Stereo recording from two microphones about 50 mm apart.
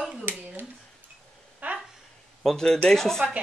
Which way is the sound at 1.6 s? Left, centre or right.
Right.